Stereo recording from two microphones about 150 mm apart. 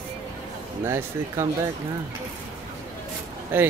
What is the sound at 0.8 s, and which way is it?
Speech, 20° right (ahead or behind).